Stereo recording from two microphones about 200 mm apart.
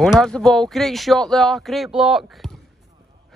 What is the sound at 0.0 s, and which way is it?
Speech, 5° left (ahead or behind).